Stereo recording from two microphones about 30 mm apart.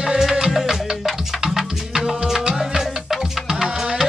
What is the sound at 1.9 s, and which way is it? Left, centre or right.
Music, right.